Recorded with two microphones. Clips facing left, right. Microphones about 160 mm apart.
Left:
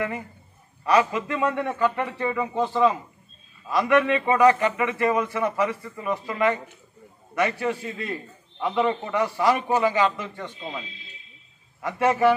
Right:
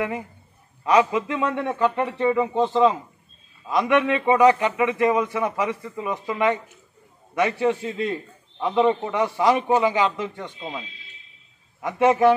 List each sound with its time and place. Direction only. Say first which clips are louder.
0.8 s a man's voice: right 2 dB; 15° right (ahead or behind)
11.8 s a man's voice: right 3 dB; 20° right (ahead or behind)